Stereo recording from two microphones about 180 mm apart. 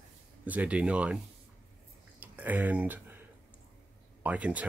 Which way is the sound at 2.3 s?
10° right (ahead or behind).